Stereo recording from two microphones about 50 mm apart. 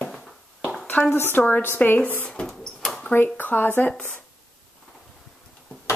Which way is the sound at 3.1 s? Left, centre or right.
Left.